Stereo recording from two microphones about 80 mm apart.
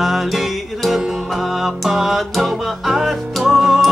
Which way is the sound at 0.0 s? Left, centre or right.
Centre.